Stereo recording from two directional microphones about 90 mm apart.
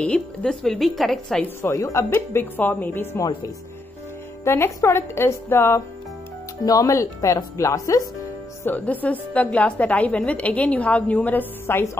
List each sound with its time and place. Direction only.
0.0 s speech: 10° left (ahead or behind)
1.7 s speech: 35° left (ahead or behind)
4.5 s speech: 30° left (ahead or behind)
6.6 s speech: 40° left (ahead or behind)
8.6 s a woman's voice: 20° left (ahead or behind)